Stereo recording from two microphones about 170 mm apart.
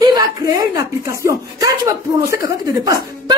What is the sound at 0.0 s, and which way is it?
A woman's voice, 25° right (ahead or behind).